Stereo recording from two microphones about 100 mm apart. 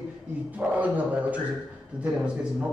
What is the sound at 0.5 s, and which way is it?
Speech, 15° right (ahead or behind).